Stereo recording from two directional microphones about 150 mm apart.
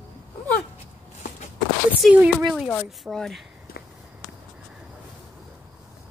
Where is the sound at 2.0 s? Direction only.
10° right (ahead or behind).